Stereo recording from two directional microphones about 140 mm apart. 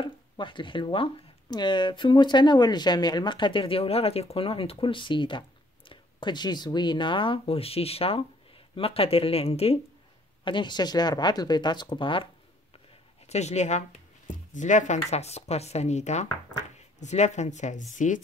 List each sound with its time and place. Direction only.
0.0 s speech: 35° left (ahead or behind)
10.4 s speech: 35° left (ahead or behind)
13.3 s speech: 50° left (ahead or behind)